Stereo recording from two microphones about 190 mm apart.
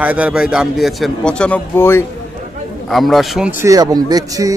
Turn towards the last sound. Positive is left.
turn(degrees=-20)  # may be behind; listen again after turning